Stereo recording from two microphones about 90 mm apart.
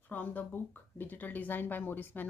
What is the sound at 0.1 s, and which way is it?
Speech, 20° left (ahead or behind).